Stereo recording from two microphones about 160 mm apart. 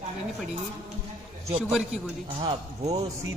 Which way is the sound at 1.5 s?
5° right (ahead or behind).